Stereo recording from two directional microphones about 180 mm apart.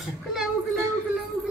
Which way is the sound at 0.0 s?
Centre (ahead or behind).